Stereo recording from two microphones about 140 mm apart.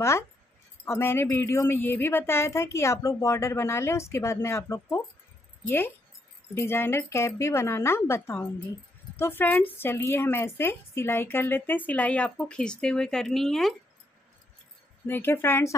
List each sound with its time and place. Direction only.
0.8 s a woman's voice: 15° left (ahead or behind)
6.6 s a woman's voice: 15° left (ahead or behind); by 13.7 s centre (ahead or behind)
15.0 s a woman's voice: 15° left (ahead or behind)